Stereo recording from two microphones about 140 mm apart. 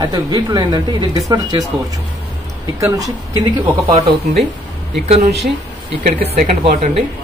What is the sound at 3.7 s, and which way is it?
Speech, 40° right (ahead or behind).